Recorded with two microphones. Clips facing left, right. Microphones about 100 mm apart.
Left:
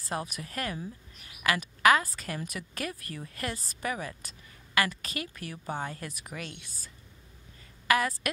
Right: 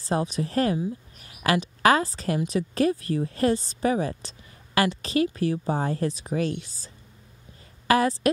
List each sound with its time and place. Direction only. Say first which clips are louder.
0.0 s a woman's voice: right 9 dB; 25° right (ahead or behind)